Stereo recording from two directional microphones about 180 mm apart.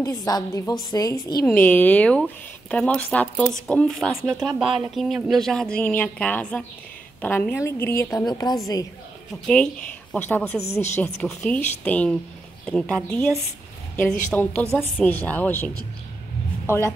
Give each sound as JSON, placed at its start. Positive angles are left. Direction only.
{"t": 0.0, "sound": "a woman's voice", "side_deg": 20}
{"t": 1.4, "sound": "a woman's voice", "side_deg": 10}
{"t": 9.3, "sound": "a woman's voice", "side_deg": 5}